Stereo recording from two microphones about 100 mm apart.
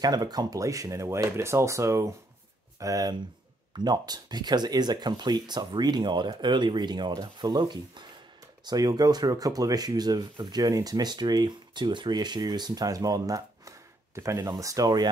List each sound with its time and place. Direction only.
0.0 s speech: 40° right (ahead or behind)
8.6 s speech: 40° right (ahead or behind)